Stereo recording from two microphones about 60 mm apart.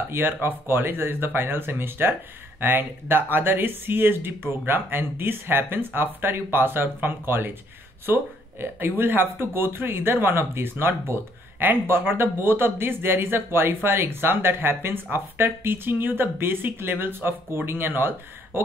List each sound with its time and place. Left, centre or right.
0.1 s speech: right